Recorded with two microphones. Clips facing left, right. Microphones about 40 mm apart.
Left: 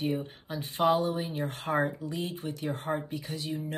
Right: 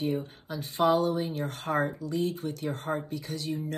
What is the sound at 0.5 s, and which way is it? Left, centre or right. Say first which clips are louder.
Speech: right 1 dB; left.